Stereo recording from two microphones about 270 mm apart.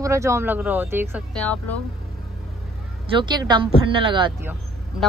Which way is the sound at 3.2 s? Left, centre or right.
Centre.